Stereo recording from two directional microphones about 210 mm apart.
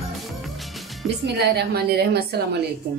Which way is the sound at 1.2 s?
50° right (ahead or behind).